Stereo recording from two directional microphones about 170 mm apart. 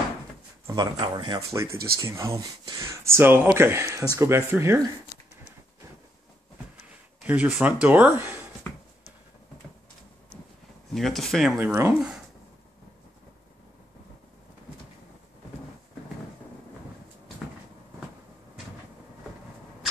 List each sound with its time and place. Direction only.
0.7 s speech: 25° right (ahead or behind)
7.2 s speech: 5° right (ahead or behind)
11.0 s speech: centre (ahead or behind)